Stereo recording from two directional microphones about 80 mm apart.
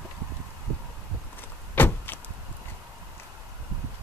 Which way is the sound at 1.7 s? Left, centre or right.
Left.